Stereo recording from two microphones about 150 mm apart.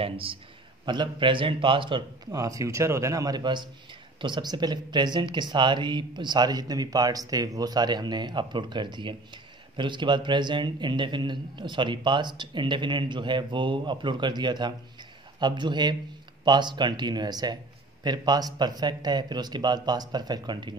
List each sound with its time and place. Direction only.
0.0 s a man's voice: 35° right (ahead or behind)